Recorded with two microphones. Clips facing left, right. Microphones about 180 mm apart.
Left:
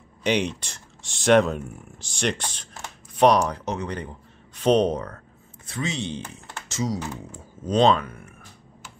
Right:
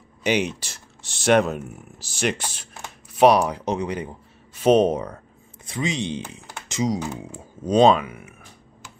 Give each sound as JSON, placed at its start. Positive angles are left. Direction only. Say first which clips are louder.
{"t": 0.2, "sound": "speech", "louder": "right 1 dB", "side_deg": -5}